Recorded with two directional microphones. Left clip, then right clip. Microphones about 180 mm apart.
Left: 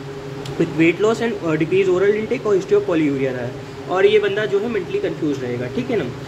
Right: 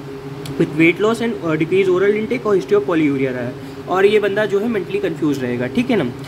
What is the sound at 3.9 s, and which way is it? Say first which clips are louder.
Speech: right 1 dB; 25° right (ahead or behind).